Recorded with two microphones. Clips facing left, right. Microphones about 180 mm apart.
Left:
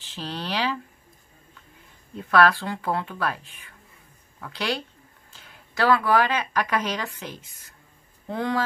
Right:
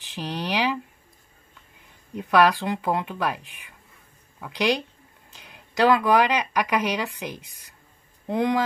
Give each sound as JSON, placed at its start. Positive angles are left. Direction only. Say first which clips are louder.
{"t": 0.0, "sound": "speech", "louder": "right 3 dB", "side_deg": -15}
{"t": 2.1, "sound": "speech", "louder": "right 1 dB", "side_deg": -15}